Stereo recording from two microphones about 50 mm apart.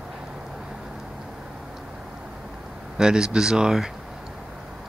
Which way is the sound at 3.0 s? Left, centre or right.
Centre.